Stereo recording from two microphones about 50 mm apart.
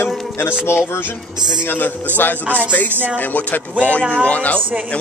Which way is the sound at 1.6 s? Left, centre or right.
Left.